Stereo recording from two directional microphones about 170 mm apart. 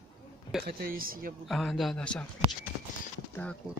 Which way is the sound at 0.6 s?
60° right (ahead or behind).